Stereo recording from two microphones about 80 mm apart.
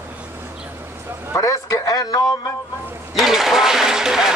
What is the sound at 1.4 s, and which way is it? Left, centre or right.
Speech, left.